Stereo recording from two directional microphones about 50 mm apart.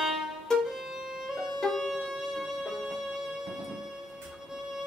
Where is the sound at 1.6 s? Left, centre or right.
Centre.